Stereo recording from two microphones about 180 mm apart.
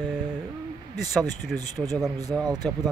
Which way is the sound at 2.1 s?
20° right (ahead or behind).